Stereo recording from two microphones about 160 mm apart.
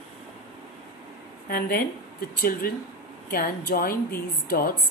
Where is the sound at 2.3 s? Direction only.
65° left (ahead or behind).